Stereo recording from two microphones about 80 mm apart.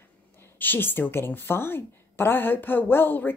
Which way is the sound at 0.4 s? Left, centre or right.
Left.